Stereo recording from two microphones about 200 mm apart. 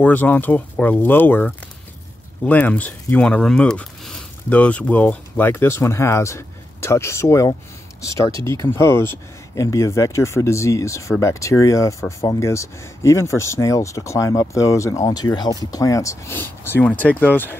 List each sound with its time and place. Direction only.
0.0 s speech: 10° left (ahead or behind)